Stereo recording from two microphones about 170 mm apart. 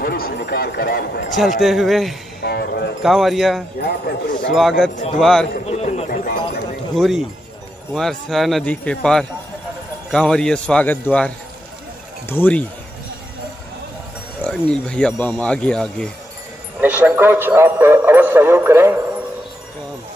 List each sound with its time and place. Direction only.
0.0 s a sound: 65° left (ahead or behind)
1.6 s speech: centre (ahead or behind)
2.4 s speech: 70° left (ahead or behind)
3.0 s speech: centre (ahead or behind)
3.8 s a man's voice: 60° left (ahead or behind)
4.5 s speech: centre (ahead or behind)
5.7 s chatter: 40° left (ahead or behind)
6.0 s clip-clop: 55° left (ahead or behind)
7.0 s speech: centre (ahead or behind)
14.4 s speech: 5° left (ahead or behind)
16.8 s a man's voice: 10° right (ahead or behind)